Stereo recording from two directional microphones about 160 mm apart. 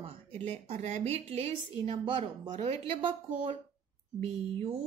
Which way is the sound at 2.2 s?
45° right (ahead or behind).